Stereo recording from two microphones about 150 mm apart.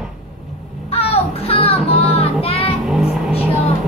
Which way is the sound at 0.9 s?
40° left (ahead or behind).